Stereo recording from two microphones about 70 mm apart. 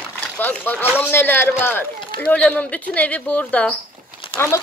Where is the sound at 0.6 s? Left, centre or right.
Left.